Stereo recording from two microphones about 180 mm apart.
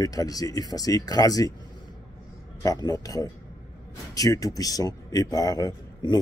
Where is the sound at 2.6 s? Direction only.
20° left (ahead or behind).